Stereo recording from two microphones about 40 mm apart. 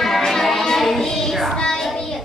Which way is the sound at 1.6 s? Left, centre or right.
Centre.